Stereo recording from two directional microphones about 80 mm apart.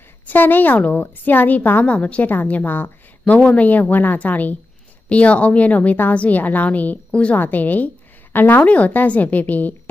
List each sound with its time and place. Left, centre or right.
0.3 s a woman's voice: left